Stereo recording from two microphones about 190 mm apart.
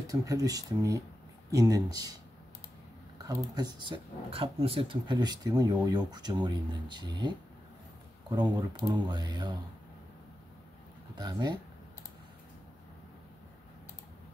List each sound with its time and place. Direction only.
0.0 s speech: 15° right (ahead or behind)
3.2 s speech: 20° right (ahead or behind)
8.9 s speech: 20° right (ahead or behind)
11.1 s speech: 20° right (ahead or behind)